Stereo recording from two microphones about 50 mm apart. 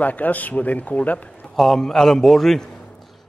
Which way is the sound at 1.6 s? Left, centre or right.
Centre.